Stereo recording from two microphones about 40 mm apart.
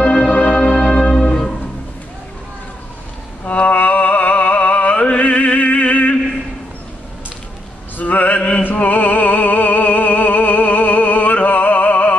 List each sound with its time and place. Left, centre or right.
0.3 s music: left
3.4 s music: left
8.0 s male singing: left
8.4 s a sound: left
8.7 s music: left